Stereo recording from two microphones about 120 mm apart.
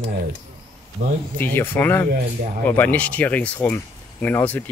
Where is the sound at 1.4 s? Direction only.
15° left (ahead or behind).